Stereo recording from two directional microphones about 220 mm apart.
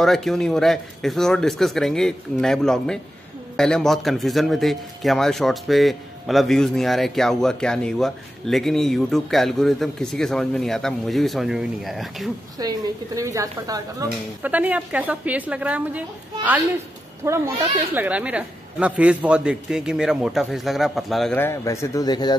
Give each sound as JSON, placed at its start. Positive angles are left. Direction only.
{"t": 0.0, "sound": "a man's voice", "side_deg": 0}
{"t": 12.5, "sound": "a woman's voice", "side_deg": -15}
{"t": 17.2, "sound": "a woman's voice", "side_deg": -10}